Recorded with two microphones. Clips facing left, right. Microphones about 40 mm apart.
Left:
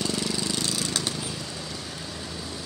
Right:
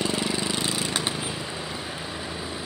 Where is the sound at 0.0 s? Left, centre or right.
Right.